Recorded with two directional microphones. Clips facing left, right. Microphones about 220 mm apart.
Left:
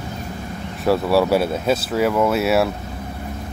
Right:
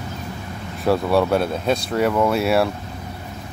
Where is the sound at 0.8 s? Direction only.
Centre (ahead or behind).